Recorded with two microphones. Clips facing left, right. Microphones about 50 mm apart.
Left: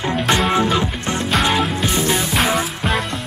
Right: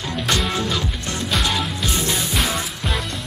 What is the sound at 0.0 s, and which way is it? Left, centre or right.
Music, left.